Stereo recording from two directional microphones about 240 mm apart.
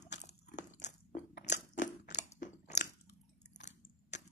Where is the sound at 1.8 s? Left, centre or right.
Left.